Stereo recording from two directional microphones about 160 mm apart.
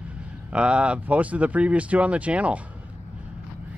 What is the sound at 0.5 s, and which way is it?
Speech, 5° right (ahead or behind).